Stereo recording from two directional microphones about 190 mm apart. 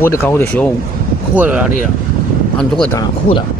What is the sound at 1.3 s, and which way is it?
Speech, 10° right (ahead or behind).